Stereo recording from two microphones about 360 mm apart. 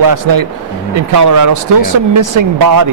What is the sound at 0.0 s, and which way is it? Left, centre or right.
Speech, right.